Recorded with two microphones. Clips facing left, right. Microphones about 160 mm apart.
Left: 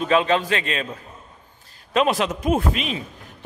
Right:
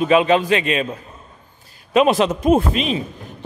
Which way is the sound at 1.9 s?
20° right (ahead or behind).